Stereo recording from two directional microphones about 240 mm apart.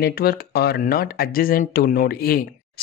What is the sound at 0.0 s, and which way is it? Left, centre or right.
Speech, left.